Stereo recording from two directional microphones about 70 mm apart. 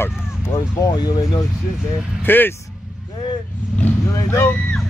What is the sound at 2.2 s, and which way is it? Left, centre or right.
Speech, left.